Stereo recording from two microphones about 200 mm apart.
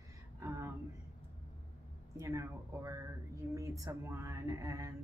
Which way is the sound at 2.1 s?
15° right (ahead or behind).